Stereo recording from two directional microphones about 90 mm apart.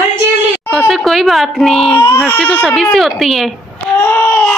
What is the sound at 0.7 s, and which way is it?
A child's voice, centre (ahead or behind).